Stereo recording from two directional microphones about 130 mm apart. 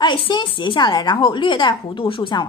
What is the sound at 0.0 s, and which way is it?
A woman's voice, 35° left (ahead or behind).